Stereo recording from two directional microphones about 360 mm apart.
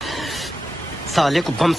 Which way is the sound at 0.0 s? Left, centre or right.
Centre.